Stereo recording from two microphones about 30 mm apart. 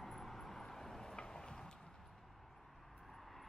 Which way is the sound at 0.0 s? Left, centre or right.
Centre.